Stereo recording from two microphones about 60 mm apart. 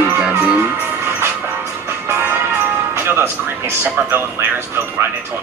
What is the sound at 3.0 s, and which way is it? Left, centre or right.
Speech, right.